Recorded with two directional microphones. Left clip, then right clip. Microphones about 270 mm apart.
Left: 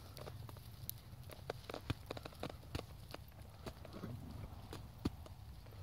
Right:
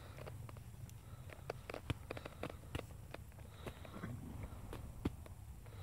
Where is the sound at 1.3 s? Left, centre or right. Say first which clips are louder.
Even; left.